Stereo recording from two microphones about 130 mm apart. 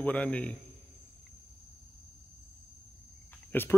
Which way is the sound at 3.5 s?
15° left (ahead or behind).